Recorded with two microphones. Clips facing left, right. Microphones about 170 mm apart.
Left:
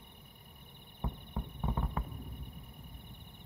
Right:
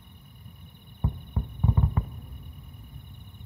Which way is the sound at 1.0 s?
Centre (ahead or behind).